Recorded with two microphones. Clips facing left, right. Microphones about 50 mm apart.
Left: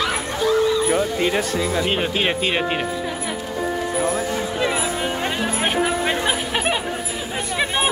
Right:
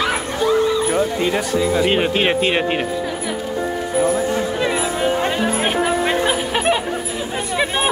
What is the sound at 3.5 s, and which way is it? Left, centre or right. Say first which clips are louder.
Music: right 3 dB; centre.